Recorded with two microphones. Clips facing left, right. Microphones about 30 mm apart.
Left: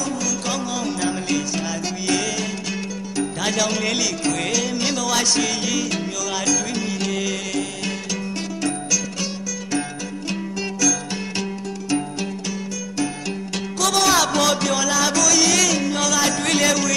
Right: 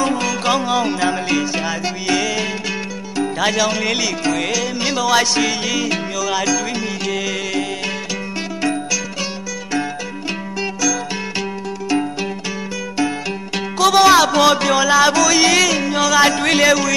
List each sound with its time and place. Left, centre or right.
0.0 s music: right; by 7.6 s centre
10.8 s music: centre
13.7 s music: right